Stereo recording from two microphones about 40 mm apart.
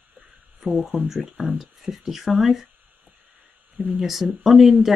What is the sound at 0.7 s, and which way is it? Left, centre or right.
Speech, right.